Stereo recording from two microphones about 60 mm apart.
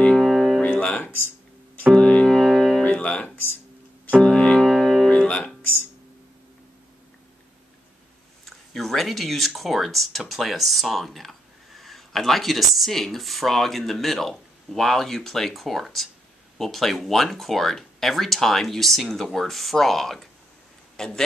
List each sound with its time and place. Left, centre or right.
0.1 s music: centre
0.7 s music: centre
2.2 s music: centre
2.8 s music: left; by 5.1 s centre
5.1 s music: left
8.5 s speech: centre